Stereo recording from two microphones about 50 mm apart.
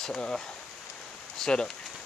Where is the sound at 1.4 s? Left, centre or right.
Centre.